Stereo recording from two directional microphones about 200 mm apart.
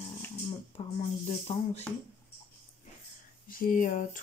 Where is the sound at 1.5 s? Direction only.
30° left (ahead or behind).